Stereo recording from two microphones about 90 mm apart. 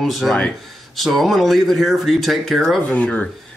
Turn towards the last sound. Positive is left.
turn(degrees=15)  # may be behind; listen again after turning